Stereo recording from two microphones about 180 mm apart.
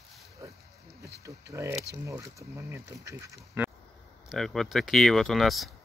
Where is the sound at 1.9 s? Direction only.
15° right (ahead or behind).